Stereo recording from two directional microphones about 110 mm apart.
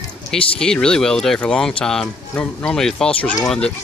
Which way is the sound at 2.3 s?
20° left (ahead or behind).